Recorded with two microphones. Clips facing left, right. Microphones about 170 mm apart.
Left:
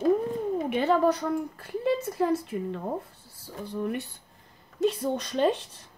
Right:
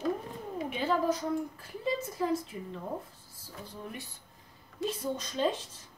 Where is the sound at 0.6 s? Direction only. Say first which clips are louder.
Left 5 dB; 65° left (ahead or behind).